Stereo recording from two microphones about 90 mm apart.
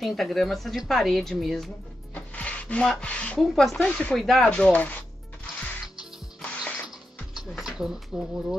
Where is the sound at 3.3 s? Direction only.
Centre (ahead or behind).